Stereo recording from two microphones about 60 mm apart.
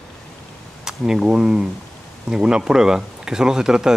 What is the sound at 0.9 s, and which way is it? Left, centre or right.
Speech, centre.